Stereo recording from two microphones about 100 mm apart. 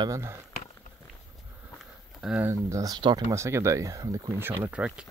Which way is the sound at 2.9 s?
50° right (ahead or behind).